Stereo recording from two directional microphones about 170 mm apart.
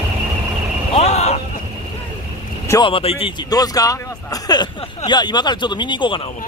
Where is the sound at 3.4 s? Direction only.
20° left (ahead or behind).